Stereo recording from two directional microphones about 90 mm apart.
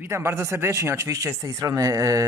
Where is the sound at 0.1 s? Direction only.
30° right (ahead or behind).